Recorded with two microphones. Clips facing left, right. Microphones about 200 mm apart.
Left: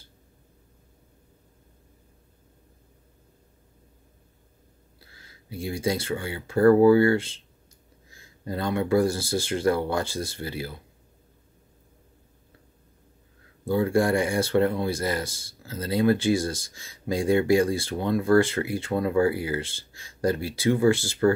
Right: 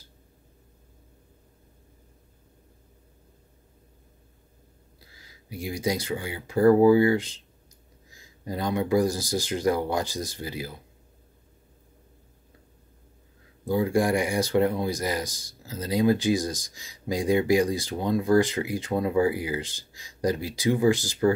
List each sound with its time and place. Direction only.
5.2 s speech: 15° right (ahead or behind)
13.7 s speech: 15° right (ahead or behind)